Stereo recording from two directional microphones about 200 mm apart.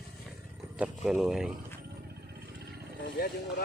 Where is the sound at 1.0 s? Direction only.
Centre (ahead or behind).